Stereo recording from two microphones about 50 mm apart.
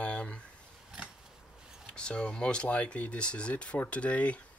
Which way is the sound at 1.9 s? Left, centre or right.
Centre.